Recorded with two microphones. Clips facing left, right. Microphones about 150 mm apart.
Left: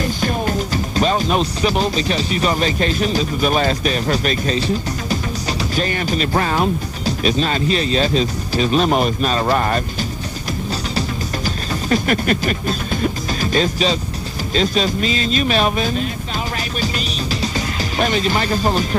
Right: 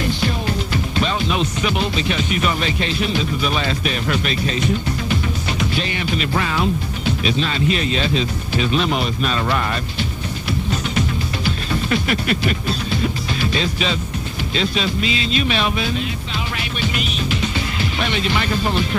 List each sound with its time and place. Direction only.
0.0 s speech: 45° left (ahead or behind)
10.7 s music: 40° left (ahead or behind)
14.5 s speech: 40° left (ahead or behind)
16.8 s music: 35° left (ahead or behind)